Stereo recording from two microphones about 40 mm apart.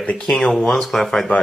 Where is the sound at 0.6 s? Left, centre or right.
Centre.